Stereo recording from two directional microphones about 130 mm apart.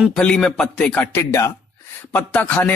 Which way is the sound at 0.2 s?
5° left (ahead or behind).